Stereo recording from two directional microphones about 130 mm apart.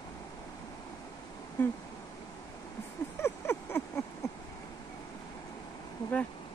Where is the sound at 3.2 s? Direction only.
15° left (ahead or behind).